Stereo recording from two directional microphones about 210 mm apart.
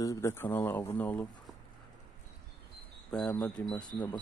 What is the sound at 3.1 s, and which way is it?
Speech, 5° left (ahead or behind).